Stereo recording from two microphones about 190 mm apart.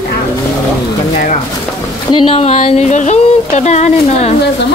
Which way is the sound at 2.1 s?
30° left (ahead or behind).